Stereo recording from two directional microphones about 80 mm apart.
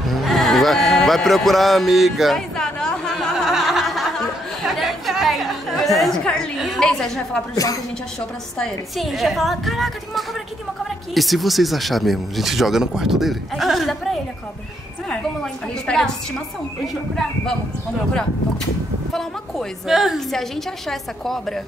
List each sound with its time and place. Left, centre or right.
0.1 s sheep: centre
4.6 s chatter: centre
6.6 s a woman's voice: centre
7.5 s a woman's voice: left
8.5 s a woman's voice: centre
19.1 s speech: centre